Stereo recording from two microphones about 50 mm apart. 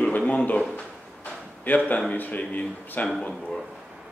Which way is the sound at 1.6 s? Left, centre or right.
Left.